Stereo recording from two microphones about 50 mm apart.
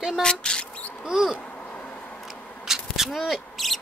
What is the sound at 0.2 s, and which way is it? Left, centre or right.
Mouse, centre.